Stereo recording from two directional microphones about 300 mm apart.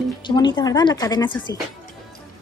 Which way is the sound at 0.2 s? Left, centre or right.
Centre.